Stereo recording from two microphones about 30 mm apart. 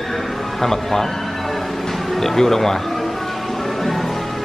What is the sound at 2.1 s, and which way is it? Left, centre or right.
Speech, centre.